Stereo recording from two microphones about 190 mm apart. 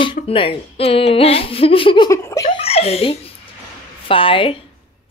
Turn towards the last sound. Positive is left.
turn(degrees=25)  # may be behind; listen again after turning